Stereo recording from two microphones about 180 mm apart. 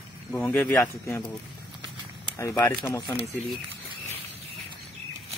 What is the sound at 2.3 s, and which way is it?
Speech, 15° left (ahead or behind).